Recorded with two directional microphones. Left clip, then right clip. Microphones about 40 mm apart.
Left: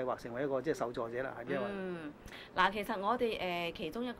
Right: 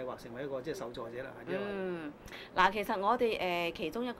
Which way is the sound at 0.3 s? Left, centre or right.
Left.